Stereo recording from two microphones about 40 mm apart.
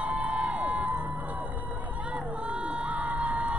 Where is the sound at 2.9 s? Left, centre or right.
Right.